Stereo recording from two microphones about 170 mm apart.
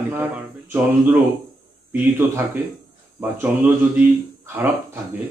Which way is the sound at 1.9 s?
10° right (ahead or behind).